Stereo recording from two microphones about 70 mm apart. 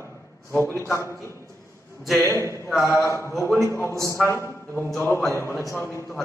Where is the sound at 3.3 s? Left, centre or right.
Centre.